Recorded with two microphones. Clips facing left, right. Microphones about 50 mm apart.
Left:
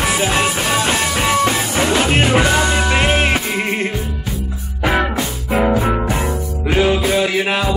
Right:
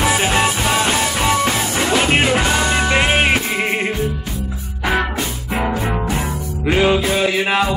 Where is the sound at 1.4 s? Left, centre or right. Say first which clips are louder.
Left 2 dB; centre.